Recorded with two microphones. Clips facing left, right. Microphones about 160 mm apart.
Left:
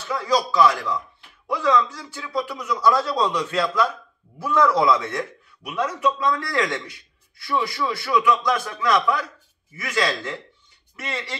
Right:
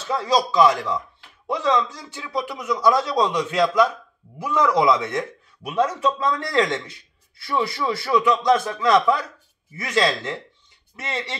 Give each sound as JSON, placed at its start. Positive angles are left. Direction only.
{"t": 0.1, "sound": "a man's voice", "side_deg": -25}
{"t": 5.7, "sound": "a man's voice", "side_deg": -30}